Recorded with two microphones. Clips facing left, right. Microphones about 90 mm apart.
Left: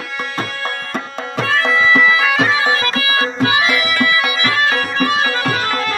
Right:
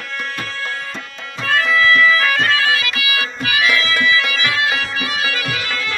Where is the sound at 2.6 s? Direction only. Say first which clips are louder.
Left 3 dB; 35° left (ahead or behind).